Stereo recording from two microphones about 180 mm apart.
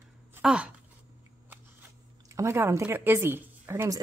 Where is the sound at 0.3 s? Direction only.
5° right (ahead or behind).